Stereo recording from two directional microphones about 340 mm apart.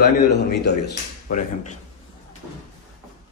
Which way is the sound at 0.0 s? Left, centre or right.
Left.